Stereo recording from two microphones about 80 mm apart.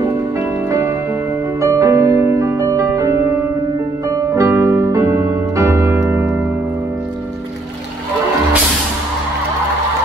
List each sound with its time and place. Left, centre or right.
0.7 s music: right
4.4 s piano: right
4.9 s keyboard: right